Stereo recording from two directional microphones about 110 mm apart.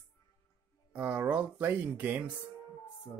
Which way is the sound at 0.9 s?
15° right (ahead or behind).